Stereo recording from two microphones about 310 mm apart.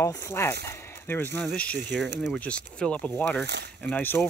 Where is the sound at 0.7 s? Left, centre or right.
Centre.